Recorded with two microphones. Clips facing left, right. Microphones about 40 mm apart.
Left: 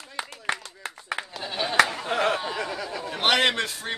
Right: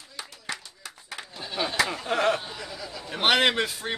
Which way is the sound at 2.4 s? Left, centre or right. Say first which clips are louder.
Left 7 dB; left.